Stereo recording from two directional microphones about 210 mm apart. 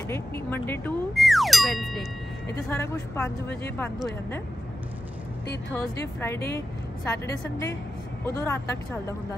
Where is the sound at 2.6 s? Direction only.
10° left (ahead or behind).